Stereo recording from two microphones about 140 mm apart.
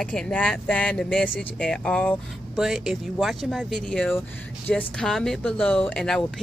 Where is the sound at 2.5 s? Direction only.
5° right (ahead or behind).